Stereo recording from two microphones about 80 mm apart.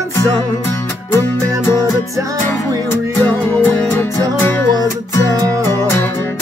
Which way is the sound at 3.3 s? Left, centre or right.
Left.